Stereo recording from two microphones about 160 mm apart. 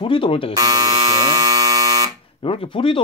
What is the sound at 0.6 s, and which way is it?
Alarm, 20° right (ahead or behind).